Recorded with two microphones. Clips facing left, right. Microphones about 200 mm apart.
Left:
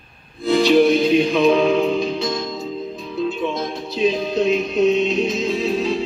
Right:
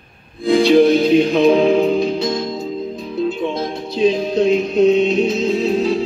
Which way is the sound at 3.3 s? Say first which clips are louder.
Right 2 dB; 30° right (ahead or behind).